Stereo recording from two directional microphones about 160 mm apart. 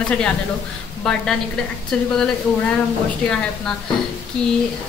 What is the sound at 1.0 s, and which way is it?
Speech, centre (ahead or behind).